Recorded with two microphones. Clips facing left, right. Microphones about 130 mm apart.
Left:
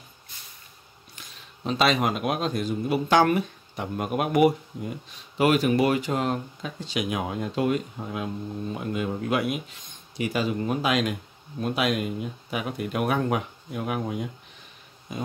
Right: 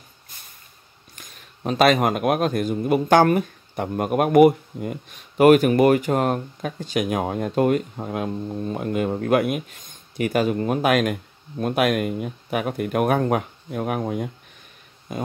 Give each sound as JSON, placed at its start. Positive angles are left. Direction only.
{"t": 1.1, "sound": "speech", "side_deg": -50}